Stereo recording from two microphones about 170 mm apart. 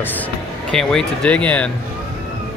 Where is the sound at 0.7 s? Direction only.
5° left (ahead or behind).